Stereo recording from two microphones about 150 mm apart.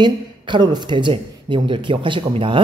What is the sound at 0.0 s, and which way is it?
A woman's voice, 30° right (ahead or behind).